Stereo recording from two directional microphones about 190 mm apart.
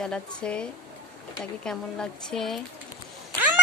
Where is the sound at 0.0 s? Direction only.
5° left (ahead or behind).